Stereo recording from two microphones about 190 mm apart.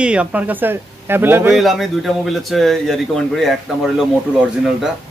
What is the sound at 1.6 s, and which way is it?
Speech, centre (ahead or behind).